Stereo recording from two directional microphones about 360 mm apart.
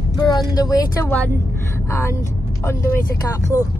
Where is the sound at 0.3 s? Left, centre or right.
Centre.